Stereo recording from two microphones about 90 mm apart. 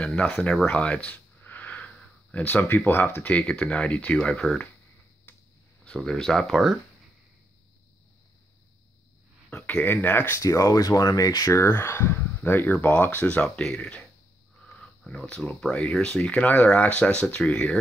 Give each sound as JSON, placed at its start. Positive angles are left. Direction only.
{"t": 0.0, "sound": "speech", "side_deg": 15}
{"t": 5.9, "sound": "speech", "side_deg": 10}
{"t": 9.5, "sound": "speech", "side_deg": 15}
{"t": 10.4, "sound": "speech", "side_deg": 40}